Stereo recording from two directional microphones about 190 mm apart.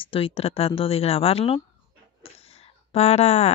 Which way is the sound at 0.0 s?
30° left (ahead or behind).